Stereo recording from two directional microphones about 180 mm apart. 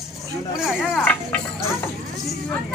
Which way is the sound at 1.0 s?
10° left (ahead or behind).